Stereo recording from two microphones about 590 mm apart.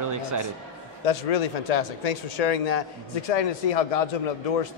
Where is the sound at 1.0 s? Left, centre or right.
Left.